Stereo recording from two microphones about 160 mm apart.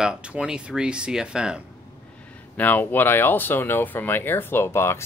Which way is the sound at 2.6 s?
10° left (ahead or behind).